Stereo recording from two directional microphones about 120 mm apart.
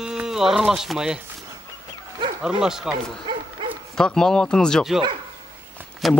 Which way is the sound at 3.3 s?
40° right (ahead or behind).